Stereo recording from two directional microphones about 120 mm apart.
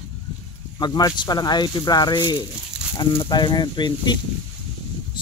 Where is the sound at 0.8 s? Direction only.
35° left (ahead or behind).